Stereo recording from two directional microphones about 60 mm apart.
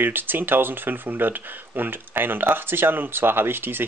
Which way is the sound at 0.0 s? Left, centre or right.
Right.